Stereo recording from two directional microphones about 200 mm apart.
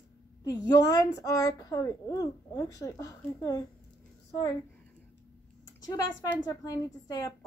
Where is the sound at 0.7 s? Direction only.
15° left (ahead or behind).